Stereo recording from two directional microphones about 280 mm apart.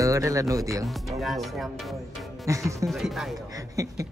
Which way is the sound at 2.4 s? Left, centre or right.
Centre.